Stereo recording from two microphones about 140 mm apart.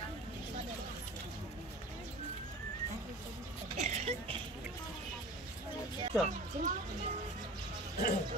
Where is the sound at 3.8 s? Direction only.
50° right (ahead or behind).